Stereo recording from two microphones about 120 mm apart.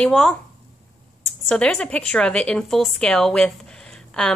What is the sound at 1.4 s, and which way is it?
A woman's voice, 5° left (ahead or behind).